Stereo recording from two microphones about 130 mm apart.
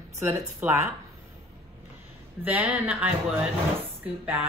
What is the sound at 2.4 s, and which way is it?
Speech, 10° right (ahead or behind).